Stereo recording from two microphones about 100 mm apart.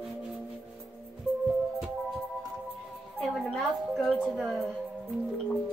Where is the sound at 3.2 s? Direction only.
5° left (ahead or behind).